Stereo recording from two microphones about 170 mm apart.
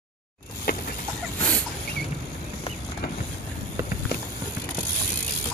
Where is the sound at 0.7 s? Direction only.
60° left (ahead or behind).